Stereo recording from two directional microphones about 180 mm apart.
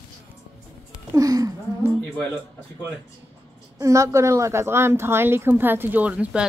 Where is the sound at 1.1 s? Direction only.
20° right (ahead or behind).